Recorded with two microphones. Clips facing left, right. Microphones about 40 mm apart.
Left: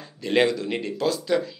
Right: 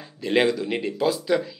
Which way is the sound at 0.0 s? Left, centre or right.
Centre.